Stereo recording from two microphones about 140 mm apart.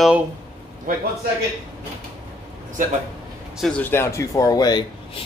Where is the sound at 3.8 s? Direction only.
20° left (ahead or behind).